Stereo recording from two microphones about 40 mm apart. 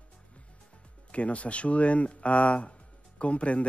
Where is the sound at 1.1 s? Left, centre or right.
Left.